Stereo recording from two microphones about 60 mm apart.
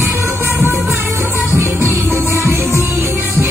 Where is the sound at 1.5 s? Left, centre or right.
Right.